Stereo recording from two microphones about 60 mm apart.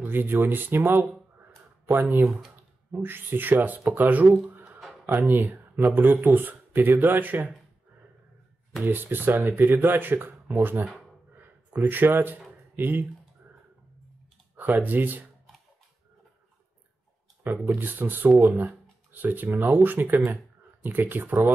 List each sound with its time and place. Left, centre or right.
0.0 s speech: right
1.9 s speech: right
8.8 s speech: right
14.8 s speech: right
17.7 s speech: right